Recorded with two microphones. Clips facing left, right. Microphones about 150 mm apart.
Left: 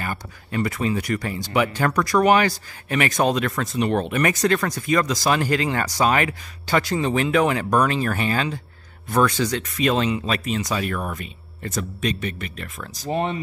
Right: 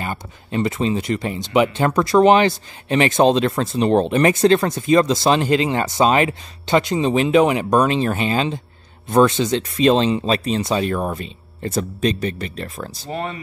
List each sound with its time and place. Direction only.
0.0 s speech: 25° right (ahead or behind)
13.1 s speech: 20° left (ahead or behind)